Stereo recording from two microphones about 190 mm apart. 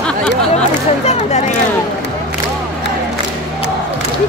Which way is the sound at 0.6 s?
35° left (ahead or behind).